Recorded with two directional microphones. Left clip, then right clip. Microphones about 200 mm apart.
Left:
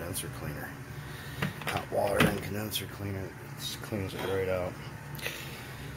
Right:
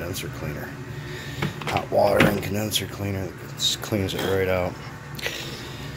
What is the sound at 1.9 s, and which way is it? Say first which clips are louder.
Speech: right 9 dB; 10° right (ahead or behind).